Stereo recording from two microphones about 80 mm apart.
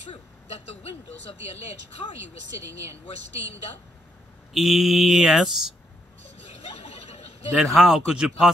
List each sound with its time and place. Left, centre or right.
4.6 s mantra: centre
7.5 s mantra: centre